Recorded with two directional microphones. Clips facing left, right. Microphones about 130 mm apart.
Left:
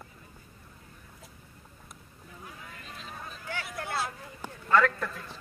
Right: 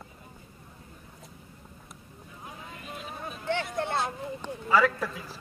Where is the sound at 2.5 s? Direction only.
25° right (ahead or behind).